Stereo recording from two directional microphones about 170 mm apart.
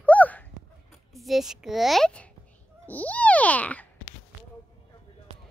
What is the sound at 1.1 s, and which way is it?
A child's voice, centre (ahead or behind).